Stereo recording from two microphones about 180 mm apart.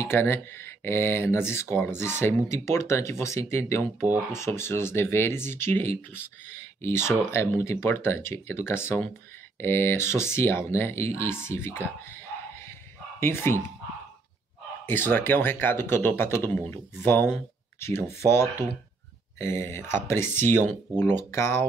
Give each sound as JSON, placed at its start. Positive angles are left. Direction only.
{"t": 0.0, "sound": "speech", "side_deg": 15}
{"t": 14.9, "sound": "speech", "side_deg": 10}